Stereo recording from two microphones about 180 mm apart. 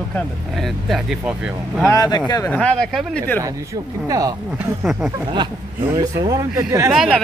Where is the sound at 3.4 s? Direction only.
20° right (ahead or behind).